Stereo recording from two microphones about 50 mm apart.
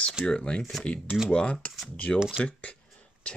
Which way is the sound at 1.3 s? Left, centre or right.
Left.